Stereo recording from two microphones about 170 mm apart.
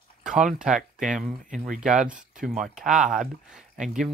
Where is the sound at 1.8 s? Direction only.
5° right (ahead or behind).